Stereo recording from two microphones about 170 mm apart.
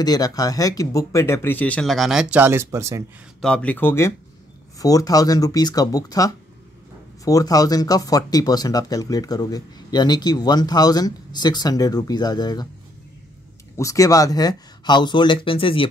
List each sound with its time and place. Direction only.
0.0 s speech: 20° left (ahead or behind); by 3.0 s 15° right (ahead or behind)
3.3 s speech: 5° left (ahead or behind); by 12.6 s 25° left (ahead or behind)
13.7 s speech: 20° left (ahead or behind)